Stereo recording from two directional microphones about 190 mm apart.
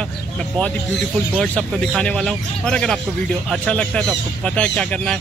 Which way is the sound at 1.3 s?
5° left (ahead or behind).